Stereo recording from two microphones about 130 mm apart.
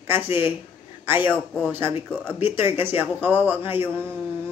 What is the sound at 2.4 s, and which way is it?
Speech, 15° right (ahead or behind).